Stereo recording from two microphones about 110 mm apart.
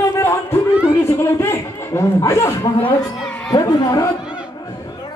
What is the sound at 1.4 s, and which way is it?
Chuckle, 25° left (ahead or behind).